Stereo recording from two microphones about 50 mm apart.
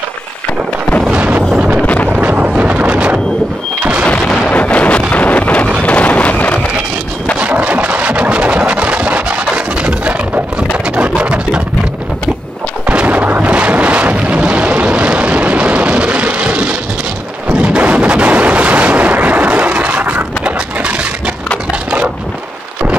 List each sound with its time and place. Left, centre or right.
2.0 s wind noise: right
4.5 s wind noise: left
7.3 s a sound: right
12.8 s artillery fire: right